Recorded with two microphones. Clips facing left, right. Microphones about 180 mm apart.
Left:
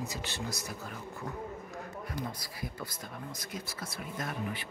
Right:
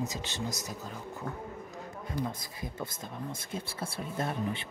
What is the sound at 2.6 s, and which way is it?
Speech, 25° right (ahead or behind).